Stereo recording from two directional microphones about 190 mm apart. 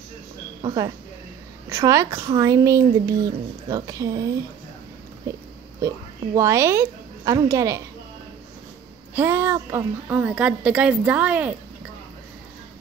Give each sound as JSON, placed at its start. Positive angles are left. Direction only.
{"t": 0.6, "sound": "a woman's voice", "side_deg": -25}
{"t": 5.3, "sound": "a woman's voice", "side_deg": -15}
{"t": 9.1, "sound": "a woman's voice", "side_deg": -10}